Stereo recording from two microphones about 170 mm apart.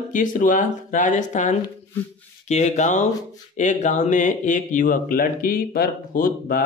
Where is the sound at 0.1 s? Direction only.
50° left (ahead or behind).